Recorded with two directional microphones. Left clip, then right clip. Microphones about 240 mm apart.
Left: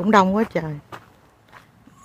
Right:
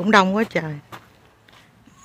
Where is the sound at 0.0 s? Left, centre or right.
Centre.